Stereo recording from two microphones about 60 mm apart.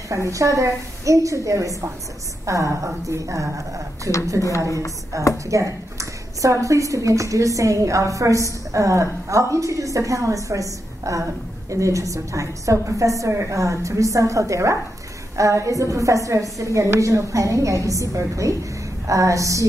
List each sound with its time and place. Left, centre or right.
0.1 s a woman's voice: right
5.4 s a woman's voice: right